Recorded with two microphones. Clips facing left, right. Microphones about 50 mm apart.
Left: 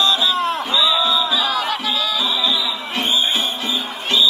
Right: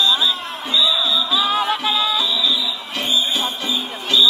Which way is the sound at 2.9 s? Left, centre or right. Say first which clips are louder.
Left 1 dB; left.